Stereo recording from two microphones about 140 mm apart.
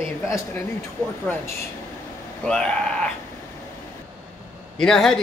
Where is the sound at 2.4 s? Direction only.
5° left (ahead or behind).